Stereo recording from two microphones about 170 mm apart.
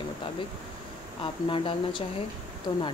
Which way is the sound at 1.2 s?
30° left (ahead or behind).